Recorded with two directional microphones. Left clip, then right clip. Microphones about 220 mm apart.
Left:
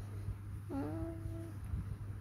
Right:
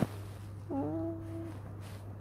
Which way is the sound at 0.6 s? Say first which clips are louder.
Right 6 dB; 15° left (ahead or behind).